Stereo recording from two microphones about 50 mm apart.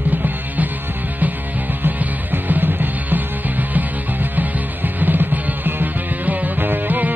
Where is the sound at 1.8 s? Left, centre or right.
Right.